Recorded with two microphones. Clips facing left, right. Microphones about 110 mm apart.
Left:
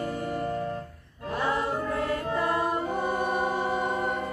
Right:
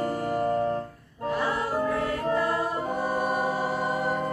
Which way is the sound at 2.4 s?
25° left (ahead or behind).